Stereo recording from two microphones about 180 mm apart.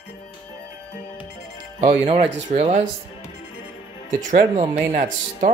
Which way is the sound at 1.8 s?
35° right (ahead or behind).